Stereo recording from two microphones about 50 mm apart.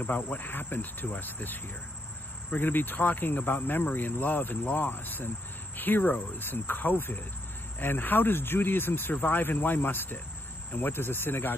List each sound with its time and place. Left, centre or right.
0.0 s speech: left